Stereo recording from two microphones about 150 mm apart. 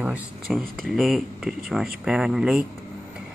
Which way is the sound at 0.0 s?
5° right (ahead or behind).